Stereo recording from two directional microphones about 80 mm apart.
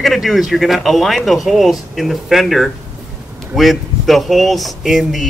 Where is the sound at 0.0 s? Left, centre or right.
Centre.